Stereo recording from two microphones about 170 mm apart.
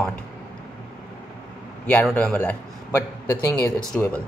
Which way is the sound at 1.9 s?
5° left (ahead or behind).